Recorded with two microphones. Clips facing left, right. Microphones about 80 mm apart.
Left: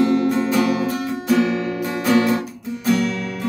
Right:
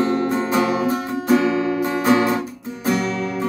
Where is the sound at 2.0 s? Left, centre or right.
Right.